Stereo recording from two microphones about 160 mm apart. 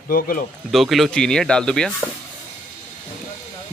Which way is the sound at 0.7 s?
Centre (ahead or behind).